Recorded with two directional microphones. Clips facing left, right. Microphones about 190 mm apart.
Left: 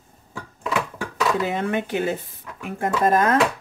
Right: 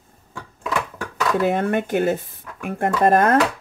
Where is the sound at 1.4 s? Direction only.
55° right (ahead or behind).